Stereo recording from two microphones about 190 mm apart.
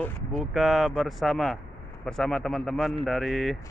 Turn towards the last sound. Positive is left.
turn(degrees=0)  # may be behind; listen again after turning